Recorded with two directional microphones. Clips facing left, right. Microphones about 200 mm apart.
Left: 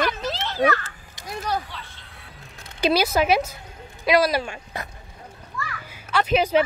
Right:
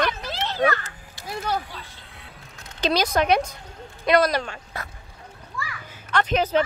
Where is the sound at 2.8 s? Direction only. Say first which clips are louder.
Left 2 dB; 10° left (ahead or behind).